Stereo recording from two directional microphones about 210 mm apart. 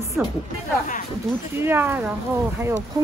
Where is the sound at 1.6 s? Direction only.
10° right (ahead or behind).